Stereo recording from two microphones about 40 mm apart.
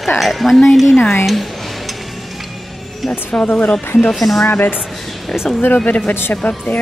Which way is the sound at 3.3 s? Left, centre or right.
Left.